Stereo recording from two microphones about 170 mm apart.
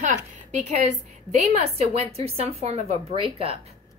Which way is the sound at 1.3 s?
40° right (ahead or behind).